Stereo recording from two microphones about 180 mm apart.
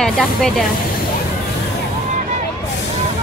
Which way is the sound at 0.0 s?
Centre (ahead or behind).